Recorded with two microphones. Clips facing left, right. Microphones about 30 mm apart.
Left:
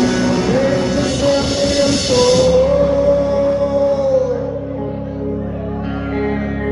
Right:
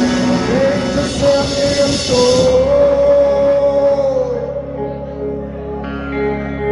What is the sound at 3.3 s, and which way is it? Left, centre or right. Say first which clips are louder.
Music: right 3 dB; right.